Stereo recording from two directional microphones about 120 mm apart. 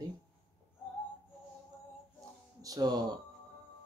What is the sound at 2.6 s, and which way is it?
Speech, 30° right (ahead or behind).